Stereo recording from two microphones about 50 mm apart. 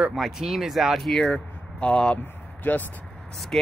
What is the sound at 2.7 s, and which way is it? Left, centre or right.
Speech, left.